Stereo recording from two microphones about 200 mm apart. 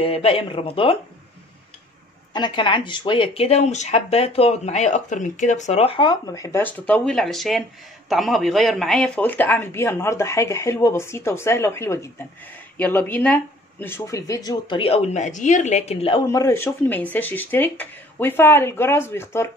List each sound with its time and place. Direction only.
0.0 s speech: 30° left (ahead or behind)
2.3 s speech: 25° left (ahead or behind)
16.3 s speech: 15° left (ahead or behind)